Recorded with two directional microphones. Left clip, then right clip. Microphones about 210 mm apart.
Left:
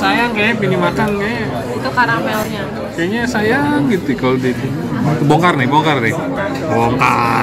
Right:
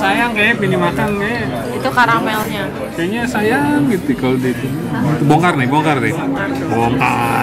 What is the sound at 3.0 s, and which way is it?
Speech, 5° left (ahead or behind).